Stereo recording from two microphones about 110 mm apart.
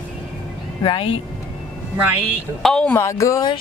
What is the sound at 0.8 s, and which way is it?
Speech, 50° left (ahead or behind).